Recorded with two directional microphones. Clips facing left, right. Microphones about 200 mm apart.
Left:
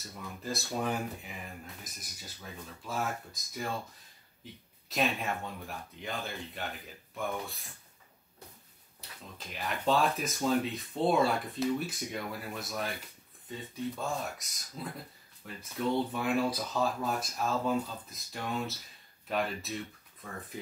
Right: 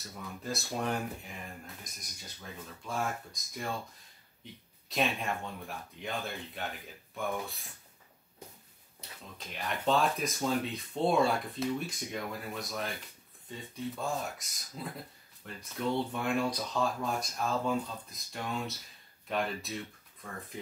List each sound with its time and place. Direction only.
0.4 s speech: centre (ahead or behind)
4.8 s speech: centre (ahead or behind)
9.4 s speech: centre (ahead or behind)